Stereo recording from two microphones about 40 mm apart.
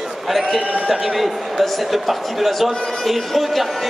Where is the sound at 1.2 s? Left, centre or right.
Centre.